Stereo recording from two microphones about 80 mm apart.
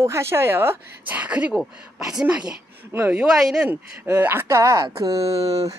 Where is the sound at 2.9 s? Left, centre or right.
Right.